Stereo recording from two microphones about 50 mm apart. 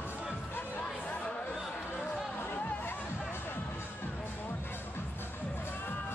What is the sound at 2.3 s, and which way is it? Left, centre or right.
Music, left.